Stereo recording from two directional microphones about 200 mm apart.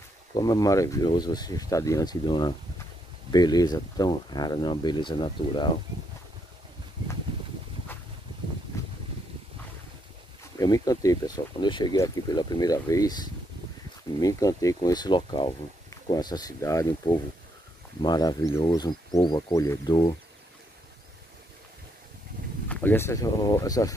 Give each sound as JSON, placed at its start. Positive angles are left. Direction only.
{"t": 0.3, "sound": "speech", "side_deg": 20}
{"t": 10.6, "sound": "speech", "side_deg": 15}
{"t": 22.7, "sound": "speech", "side_deg": 10}